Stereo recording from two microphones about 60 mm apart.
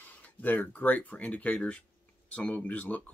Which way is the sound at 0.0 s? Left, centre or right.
Left.